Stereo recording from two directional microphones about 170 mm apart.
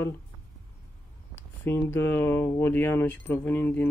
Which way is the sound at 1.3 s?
10° left (ahead or behind).